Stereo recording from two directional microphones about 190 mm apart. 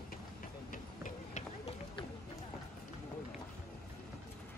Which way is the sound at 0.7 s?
40° left (ahead or behind).